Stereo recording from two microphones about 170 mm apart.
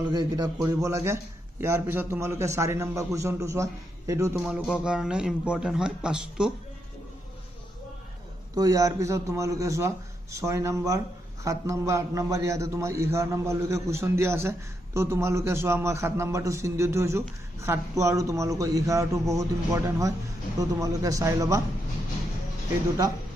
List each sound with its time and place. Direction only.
0.1 s a man's voice: 25° right (ahead or behind)
4.4 s speech: 5° right (ahead or behind)
8.5 s a man's voice: 20° right (ahead or behind)